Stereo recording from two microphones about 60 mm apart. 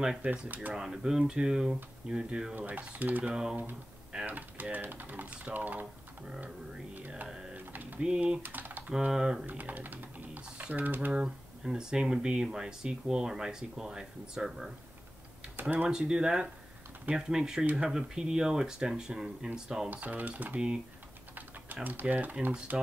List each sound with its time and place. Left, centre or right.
0.2 s speech: right
0.7 s speech: centre
2.5 s speech: right
7.5 s a sound: right
8.0 s speech: centre
8.4 s typing: right
8.9 s speech: centre
9.5 s speech: right
11.1 s speech: centre
15.9 s speech: centre
19.9 s speech: right
21.7 s typing: right
22.0 s speech: right